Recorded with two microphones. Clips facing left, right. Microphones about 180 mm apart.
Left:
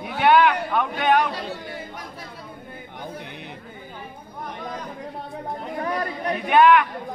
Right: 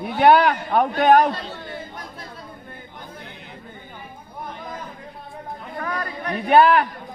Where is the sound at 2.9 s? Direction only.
65° left (ahead or behind).